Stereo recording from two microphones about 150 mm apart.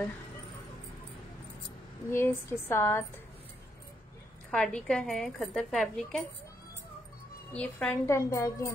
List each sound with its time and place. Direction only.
2.0 s speech: 15° left (ahead or behind)
4.5 s a woman's voice: 5° left (ahead or behind)
7.5 s speech: 5° left (ahead or behind)
8.1 s a woman's voice: 20° left (ahead or behind)